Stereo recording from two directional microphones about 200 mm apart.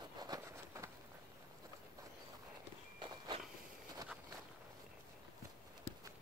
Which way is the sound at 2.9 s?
25° right (ahead or behind).